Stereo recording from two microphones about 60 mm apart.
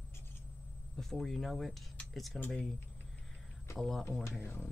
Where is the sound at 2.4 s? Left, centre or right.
Left.